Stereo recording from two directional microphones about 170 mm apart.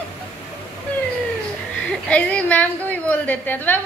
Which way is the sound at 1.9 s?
10° left (ahead or behind).